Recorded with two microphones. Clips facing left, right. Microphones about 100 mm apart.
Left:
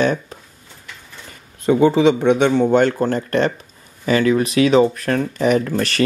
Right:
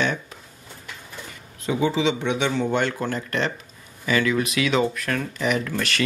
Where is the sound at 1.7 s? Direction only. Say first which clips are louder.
Left 9 dB; 50° left (ahead or behind).